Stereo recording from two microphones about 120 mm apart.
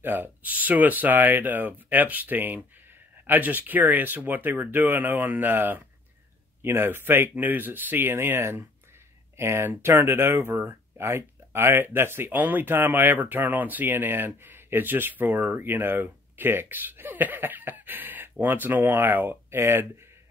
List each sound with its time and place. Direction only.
0.0 s speech: 15° right (ahead or behind)